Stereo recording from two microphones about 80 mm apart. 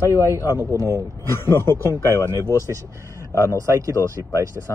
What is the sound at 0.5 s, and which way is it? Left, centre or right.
Speech, right.